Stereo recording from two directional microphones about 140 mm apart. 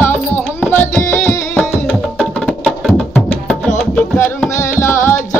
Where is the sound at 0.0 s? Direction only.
15° left (ahead or behind).